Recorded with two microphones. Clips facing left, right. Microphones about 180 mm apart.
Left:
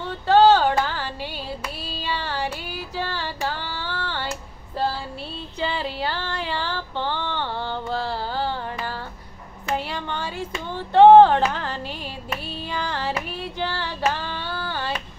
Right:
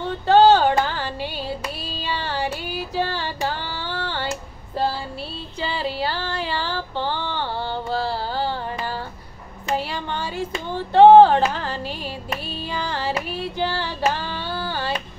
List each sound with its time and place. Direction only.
0.3 s music: 15° right (ahead or behind)
2.0 s child singing: 15° right (ahead or behind)
3.2 s music: 15° right (ahead or behind)
5.7 s female singing: 10° right (ahead or behind)
9.8 s a sound: 10° right (ahead or behind)
10.7 s music: 10° right (ahead or behind)
12.7 s female singing: 10° right (ahead or behind)